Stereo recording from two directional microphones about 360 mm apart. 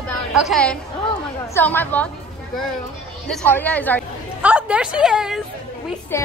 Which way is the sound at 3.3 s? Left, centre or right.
Centre.